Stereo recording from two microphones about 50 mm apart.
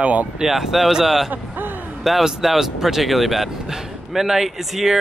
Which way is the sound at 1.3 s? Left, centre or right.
Right.